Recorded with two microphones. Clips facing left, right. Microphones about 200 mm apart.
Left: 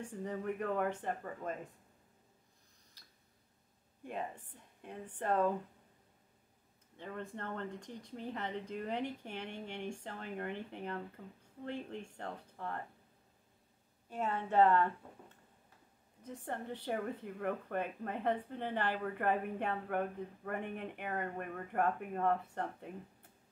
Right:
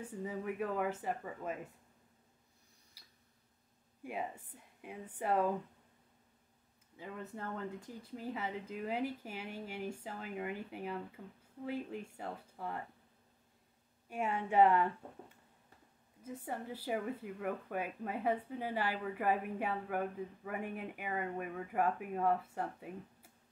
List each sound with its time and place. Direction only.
0.0 s speech: 5° right (ahead or behind)
3.0 s tick: 10° right (ahead or behind)
4.0 s speech: 10° right (ahead or behind)
7.0 s speech: 5° right (ahead or behind)
14.0 s speech: 10° right (ahead or behind)